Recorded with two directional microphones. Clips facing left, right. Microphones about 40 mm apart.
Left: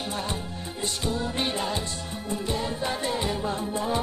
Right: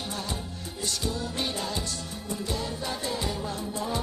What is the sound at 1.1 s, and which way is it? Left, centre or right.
Music, left.